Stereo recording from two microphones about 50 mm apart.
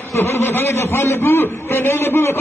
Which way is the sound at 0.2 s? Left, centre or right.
Left.